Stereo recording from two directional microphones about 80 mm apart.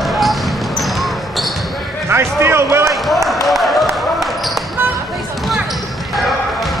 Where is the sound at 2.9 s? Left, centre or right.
Centre.